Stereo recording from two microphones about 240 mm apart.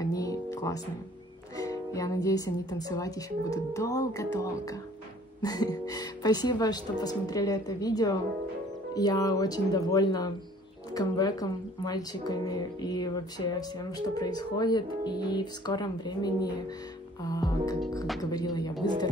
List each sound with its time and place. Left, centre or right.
0.0 s music: centre
1.6 s speech: centre